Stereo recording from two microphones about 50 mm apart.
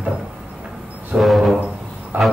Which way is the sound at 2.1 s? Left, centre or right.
Right.